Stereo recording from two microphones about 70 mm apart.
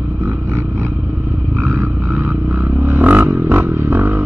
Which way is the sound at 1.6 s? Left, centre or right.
Right.